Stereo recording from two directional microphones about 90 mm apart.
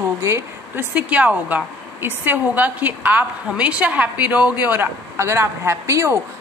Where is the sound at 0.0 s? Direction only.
30° right (ahead or behind).